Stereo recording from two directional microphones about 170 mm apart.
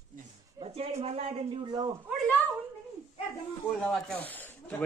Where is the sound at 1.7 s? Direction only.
25° right (ahead or behind).